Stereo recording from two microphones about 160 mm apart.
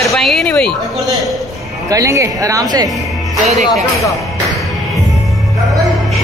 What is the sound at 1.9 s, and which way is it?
Speech, 20° right (ahead or behind).